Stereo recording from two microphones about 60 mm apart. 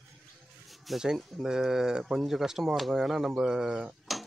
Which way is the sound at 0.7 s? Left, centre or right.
Centre.